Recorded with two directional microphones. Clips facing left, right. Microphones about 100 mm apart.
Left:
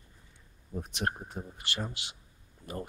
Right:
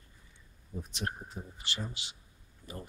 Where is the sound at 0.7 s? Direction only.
60° left (ahead or behind).